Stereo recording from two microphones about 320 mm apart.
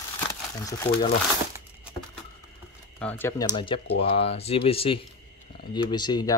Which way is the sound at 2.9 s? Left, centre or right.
Centre.